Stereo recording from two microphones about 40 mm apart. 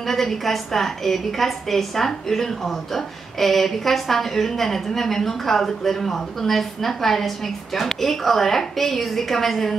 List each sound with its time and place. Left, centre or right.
0.0 s a woman's voice: centre